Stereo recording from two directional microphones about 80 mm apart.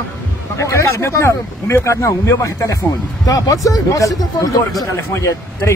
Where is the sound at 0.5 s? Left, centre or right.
Left.